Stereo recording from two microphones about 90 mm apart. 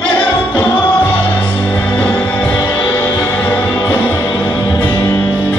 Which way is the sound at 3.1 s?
40° left (ahead or behind).